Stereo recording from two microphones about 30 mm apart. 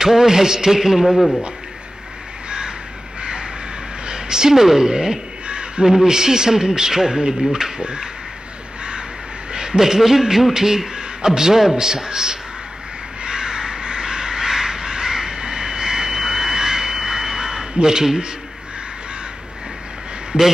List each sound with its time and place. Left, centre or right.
0.0 s music: centre
1.0 s speech: centre
3.2 s crow: right
4.1 s a woman's voice: right
5.5 s a sound: right
5.9 s a man's voice: centre
7.8 s speech: right
9.5 s a man's voice: right
10.5 s music: centre
11.0 s a man's voice: right
13.2 s crow: right
17.8 s a man's voice: centre